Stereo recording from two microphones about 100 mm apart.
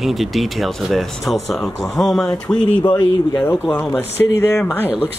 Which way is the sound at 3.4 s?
20° left (ahead or behind).